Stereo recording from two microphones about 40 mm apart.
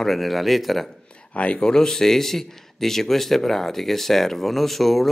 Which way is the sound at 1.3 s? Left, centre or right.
Left.